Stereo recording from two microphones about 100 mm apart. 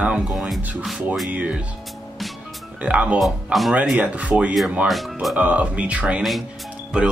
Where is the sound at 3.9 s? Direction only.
15° right (ahead or behind).